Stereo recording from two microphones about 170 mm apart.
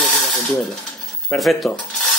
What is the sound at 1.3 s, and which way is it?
Speech, centre (ahead or behind).